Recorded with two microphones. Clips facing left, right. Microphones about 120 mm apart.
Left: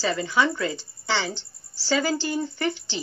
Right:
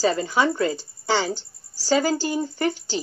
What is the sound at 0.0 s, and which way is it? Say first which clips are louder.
Speech: right 3 dB; 40° right (ahead or behind).